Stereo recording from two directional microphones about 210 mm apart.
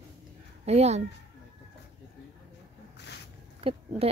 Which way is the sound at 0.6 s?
30° right (ahead or behind).